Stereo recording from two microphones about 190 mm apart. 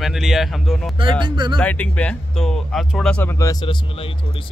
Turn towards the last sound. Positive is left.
turn(degrees=25)  # may be behind; listen again after turning